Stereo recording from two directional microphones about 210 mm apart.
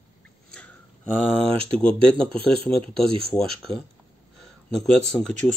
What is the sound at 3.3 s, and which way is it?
Speech, centre (ahead or behind).